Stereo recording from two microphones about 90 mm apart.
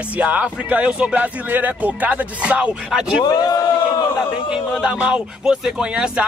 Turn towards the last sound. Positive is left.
turn(degrees=-10)  # may be behind; listen again after turning